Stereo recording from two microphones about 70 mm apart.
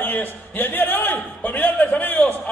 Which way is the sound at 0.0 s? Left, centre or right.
Left.